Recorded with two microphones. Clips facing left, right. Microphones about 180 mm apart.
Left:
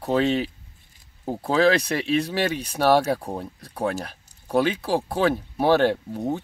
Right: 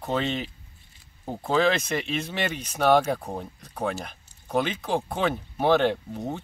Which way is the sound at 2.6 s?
35° left (ahead or behind).